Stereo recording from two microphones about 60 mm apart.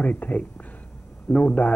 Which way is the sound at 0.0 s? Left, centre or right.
Left.